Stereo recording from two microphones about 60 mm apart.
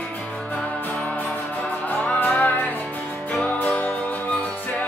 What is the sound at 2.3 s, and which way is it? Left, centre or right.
Music, left.